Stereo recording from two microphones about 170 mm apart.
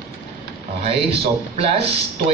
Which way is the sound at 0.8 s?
35° right (ahead or behind).